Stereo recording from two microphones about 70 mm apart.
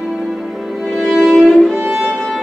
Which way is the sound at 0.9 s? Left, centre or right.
Centre.